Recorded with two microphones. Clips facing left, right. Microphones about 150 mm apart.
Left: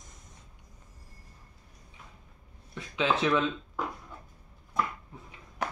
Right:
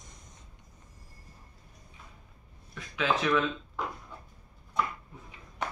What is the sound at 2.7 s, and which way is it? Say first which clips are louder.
Speech: left 1 dB; 25° left (ahead or behind).